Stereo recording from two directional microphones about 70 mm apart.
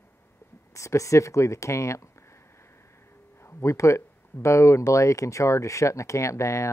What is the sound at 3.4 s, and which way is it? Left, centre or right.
Speech, left.